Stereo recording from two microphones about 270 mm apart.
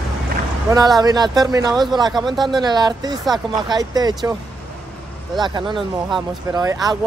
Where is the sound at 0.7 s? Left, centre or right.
Centre.